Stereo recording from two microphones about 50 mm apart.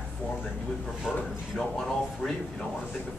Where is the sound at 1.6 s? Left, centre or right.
Centre.